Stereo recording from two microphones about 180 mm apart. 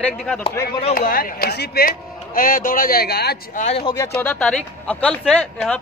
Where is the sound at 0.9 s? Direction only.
50° left (ahead or behind).